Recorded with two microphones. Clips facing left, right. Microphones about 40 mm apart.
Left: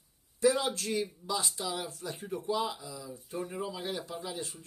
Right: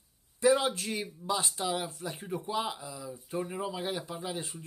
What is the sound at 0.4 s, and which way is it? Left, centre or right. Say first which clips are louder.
Speech: right 2 dB; right.